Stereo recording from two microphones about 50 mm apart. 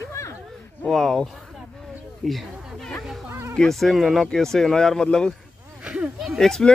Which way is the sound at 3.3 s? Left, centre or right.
Right.